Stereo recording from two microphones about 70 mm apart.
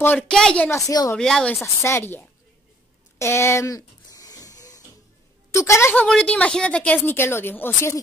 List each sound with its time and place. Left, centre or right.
0.3 s speech: centre
0.7 s speech: left
1.1 s speech: centre
1.6 s speech: left
3.2 s a sound: left
5.5 s a woman's voice: left
5.9 s speech: centre
7.1 s speech: left